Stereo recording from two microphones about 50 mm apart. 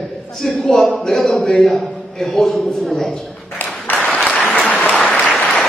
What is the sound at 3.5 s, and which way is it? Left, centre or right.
Applause, left.